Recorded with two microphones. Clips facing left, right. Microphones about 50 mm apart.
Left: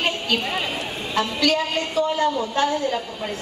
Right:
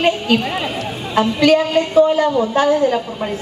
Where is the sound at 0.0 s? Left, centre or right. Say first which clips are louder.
Right 7 dB; centre.